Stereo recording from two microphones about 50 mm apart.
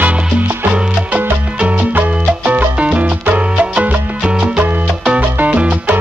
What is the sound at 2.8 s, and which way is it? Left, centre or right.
Salsa music, right.